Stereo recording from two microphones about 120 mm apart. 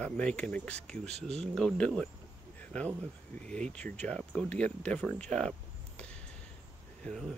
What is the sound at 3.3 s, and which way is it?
Speech, 10° left (ahead or behind).